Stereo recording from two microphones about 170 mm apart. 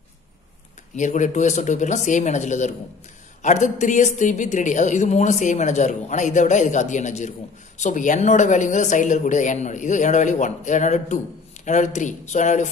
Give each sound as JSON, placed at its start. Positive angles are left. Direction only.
{"t": 0.9, "sound": "speech", "side_deg": 45}